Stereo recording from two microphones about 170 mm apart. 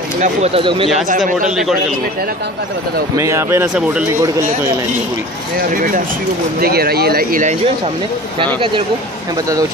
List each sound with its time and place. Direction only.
0.2 s speech: 40° right (ahead or behind)
1.0 s a man's voice: 50° right (ahead or behind)
1.6 s a man's voice: centre (ahead or behind)
3.2 s speech: 15° right (ahead or behind)
5.7 s speech: 55° right (ahead or behind)
6.6 s speech: 65° right (ahead or behind)